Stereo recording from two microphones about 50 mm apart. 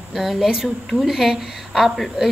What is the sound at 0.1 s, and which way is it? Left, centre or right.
A woman's voice, centre.